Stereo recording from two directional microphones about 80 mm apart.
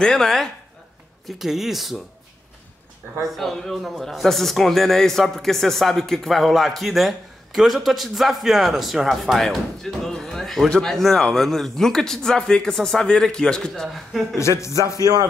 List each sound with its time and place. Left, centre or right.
0.0 s a man's voice: centre
3.3 s a man's voice: centre
14.3 s a man's voice: left